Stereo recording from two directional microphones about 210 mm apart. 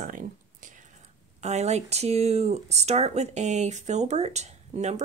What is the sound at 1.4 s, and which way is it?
Speech, 30° right (ahead or behind).